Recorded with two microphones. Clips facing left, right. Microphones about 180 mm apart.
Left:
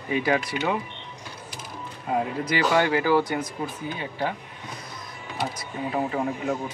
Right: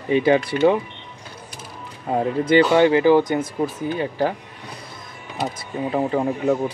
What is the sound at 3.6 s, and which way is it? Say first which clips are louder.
Speech: right 8 dB; 40° right (ahead or behind).